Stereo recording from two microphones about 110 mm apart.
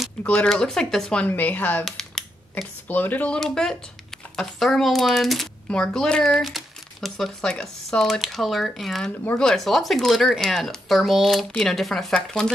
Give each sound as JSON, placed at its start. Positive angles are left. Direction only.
{"t": 0.2, "sound": "speech", "side_deg": 10}
{"t": 1.2, "sound": "speech", "side_deg": 15}
{"t": 1.9, "sound": "a sound", "side_deg": 5}
{"t": 2.5, "sound": "speech", "side_deg": 15}
{"t": 3.3, "sound": "speech", "side_deg": 5}